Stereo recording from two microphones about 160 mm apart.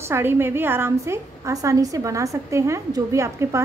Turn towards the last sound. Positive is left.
turn(degrees=-15)  # may be behind; listen again after turning